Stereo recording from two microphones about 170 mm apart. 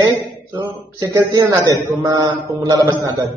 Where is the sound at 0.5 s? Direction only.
15° right (ahead or behind).